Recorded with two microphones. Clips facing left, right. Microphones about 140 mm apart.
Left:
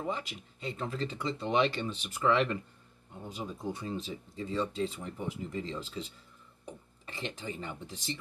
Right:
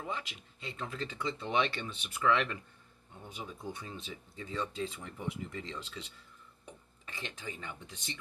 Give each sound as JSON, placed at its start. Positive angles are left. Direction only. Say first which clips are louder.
{"t": 0.0, "sound": "speech", "louder": "left 4 dB", "side_deg": 35}
{"t": 3.6, "sound": "speech", "louder": "left 9 dB", "side_deg": 30}